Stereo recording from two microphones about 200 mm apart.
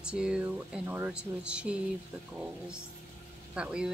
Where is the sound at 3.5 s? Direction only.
5° right (ahead or behind).